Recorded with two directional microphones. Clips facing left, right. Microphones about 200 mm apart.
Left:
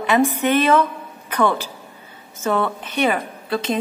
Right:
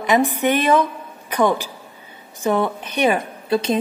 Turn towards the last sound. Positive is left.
turn(degrees=-20)  # may be behind; listen again after turning